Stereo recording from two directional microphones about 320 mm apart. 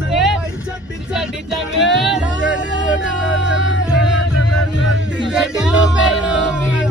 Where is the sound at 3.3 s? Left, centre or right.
Left.